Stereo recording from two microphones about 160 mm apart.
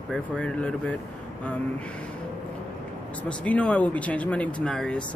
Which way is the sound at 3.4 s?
10° left (ahead or behind).